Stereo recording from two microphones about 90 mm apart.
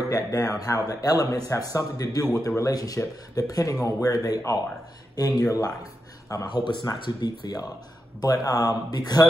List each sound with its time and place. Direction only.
0.1 s a man's voice: 40° left (ahead or behind)
6.4 s speech: 60° left (ahead or behind)
6.9 s a man's voice: 45° left (ahead or behind)